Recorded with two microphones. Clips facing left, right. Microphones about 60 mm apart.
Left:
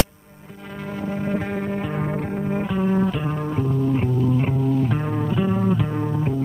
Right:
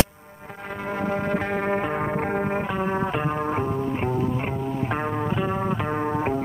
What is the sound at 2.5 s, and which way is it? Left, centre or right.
Music, right.